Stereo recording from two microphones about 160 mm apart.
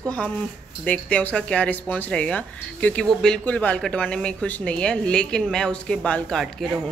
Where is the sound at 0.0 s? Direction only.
5° left (ahead or behind).